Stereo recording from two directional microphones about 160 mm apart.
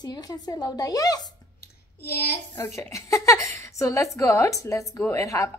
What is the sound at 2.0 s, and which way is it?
Speech, 80° left.